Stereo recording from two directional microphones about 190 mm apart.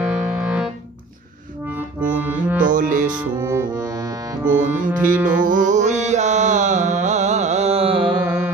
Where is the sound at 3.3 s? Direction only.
15° right (ahead or behind).